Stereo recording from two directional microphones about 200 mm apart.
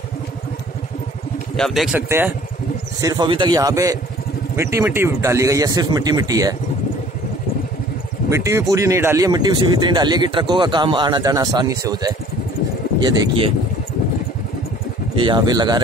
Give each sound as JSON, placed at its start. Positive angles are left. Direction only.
{"t": 1.6, "sound": "speech", "side_deg": 0}
{"t": 8.3, "sound": "speech", "side_deg": -15}
{"t": 15.2, "sound": "speech", "side_deg": -20}